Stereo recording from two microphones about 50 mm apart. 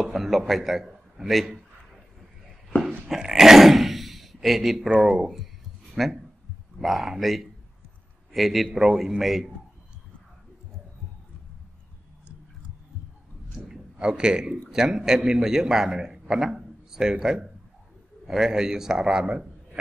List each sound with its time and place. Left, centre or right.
0.0 s a man's voice: centre
3.2 s a man's voice: centre
13.9 s a man's voice: centre
19.2 s a sound: right